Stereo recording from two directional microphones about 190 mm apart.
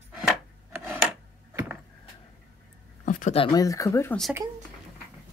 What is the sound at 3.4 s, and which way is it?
Speech, 20° left (ahead or behind).